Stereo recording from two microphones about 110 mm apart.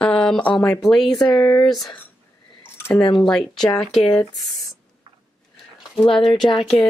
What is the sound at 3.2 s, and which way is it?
Speech, 5° left (ahead or behind).